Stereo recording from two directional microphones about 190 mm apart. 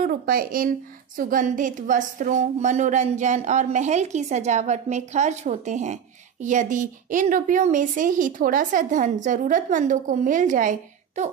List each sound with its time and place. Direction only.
0.0 s a woman's voice: 50° right (ahead or behind)